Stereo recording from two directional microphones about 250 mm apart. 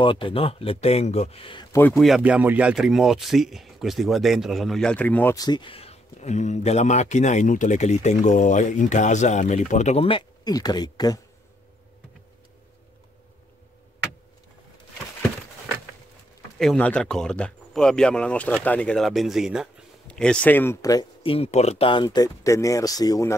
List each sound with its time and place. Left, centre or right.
0.0 s speech: left
16.5 s speech: centre